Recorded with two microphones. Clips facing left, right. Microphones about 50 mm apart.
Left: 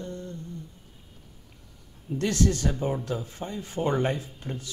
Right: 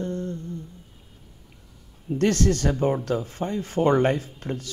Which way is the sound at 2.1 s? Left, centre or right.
Right.